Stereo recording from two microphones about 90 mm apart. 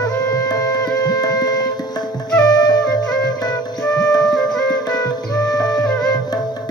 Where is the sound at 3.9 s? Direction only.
10° left (ahead or behind).